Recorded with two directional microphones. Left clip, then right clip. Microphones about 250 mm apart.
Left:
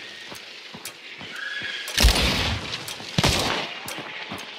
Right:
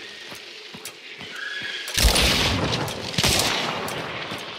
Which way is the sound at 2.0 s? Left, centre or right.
Right.